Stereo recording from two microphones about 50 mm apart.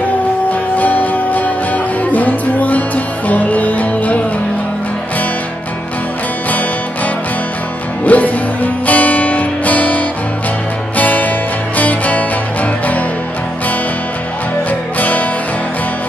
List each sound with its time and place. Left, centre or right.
0.5 s music: left
8.0 s music: left
15.0 s music: left